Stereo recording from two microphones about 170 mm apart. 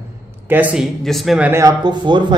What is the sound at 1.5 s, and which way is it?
Speech, 20° right (ahead or behind).